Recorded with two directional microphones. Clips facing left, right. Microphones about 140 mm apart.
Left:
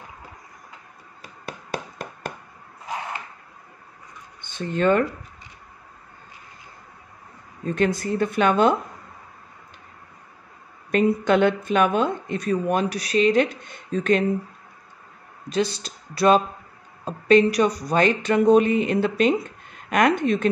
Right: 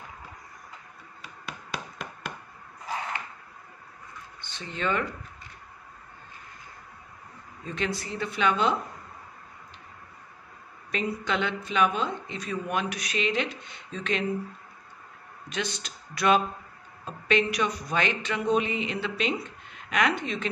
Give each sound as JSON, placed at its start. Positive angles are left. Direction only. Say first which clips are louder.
{"t": 1.2, "sound": "a sound", "louder": "left 4 dB", "side_deg": 40}
{"t": 4.4, "sound": "speech", "louder": "left 10 dB", "side_deg": 50}
{"t": 7.6, "sound": "speech", "louder": "left 9 dB", "side_deg": 50}
{"t": 10.9, "sound": "speech", "louder": "left 10 dB", "side_deg": 50}
{"t": 15.5, "sound": "speech", "louder": "left 9 dB", "side_deg": 35}